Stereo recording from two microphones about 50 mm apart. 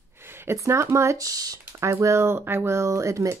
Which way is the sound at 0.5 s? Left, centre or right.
Right.